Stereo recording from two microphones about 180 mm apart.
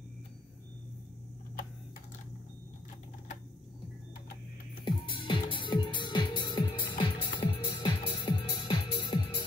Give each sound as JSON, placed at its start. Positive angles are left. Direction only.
{"t": 5.1, "sound": "music", "side_deg": 25}